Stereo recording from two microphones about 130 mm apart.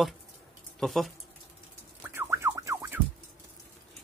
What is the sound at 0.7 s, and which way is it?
Speech, centre (ahead or behind).